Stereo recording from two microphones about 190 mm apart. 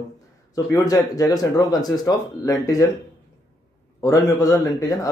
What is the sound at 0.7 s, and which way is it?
Speech, 20° left (ahead or behind).